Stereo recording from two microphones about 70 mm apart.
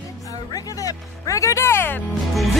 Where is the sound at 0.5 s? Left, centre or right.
Left.